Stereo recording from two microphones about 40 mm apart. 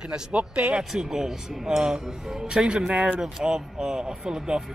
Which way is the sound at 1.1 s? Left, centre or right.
Centre.